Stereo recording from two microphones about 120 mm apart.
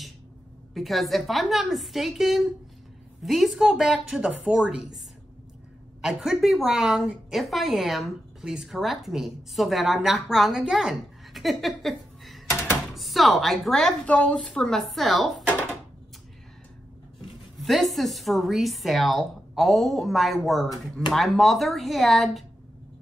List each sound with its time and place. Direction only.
0.7 s a woman's voice: centre (ahead or behind)
17.6 s a woman's voice: centre (ahead or behind)